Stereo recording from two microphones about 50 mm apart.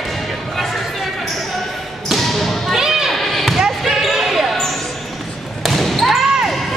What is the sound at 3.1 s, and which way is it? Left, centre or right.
Basketball bounce, centre.